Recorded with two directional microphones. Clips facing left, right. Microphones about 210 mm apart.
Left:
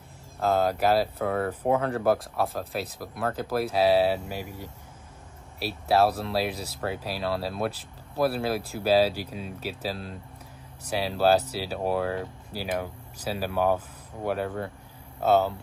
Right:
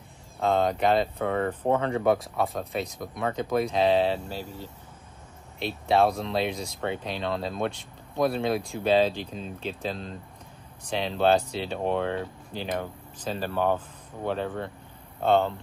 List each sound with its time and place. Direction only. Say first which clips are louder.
0.4 s speech: even; 5° left (ahead or behind)